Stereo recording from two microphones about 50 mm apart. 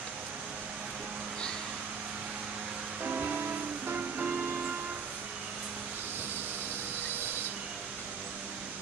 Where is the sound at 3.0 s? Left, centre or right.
Right.